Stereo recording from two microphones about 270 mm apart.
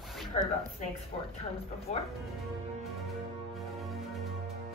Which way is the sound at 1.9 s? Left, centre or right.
Left.